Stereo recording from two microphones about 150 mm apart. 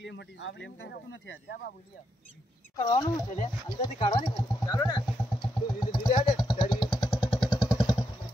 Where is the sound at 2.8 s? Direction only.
25° left (ahead or behind).